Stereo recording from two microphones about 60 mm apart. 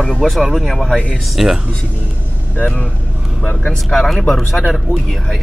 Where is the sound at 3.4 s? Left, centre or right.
Left.